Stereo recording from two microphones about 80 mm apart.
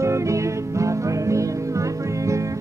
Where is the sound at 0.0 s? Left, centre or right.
Right.